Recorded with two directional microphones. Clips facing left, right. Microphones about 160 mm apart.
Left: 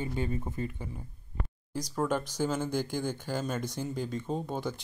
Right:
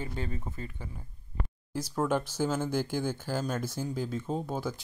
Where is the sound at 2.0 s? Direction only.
10° right (ahead or behind).